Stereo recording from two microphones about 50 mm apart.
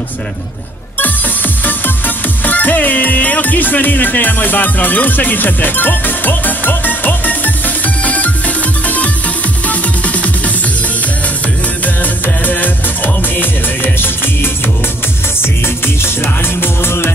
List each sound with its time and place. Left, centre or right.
1.6 s music: left
11.8 s music: left
16.6 s music: left